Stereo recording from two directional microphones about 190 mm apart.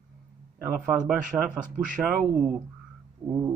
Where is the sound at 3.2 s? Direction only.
10° right (ahead or behind).